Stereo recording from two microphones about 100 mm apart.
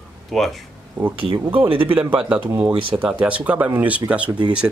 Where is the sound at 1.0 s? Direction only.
10° right (ahead or behind).